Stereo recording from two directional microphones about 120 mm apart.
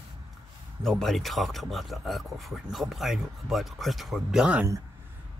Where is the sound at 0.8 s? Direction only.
Centre (ahead or behind).